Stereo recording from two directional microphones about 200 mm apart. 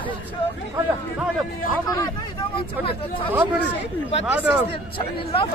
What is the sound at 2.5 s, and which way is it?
Speech, 25° left (ahead or behind).